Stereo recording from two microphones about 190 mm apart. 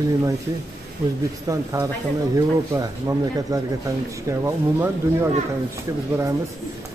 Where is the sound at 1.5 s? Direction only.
15° right (ahead or behind).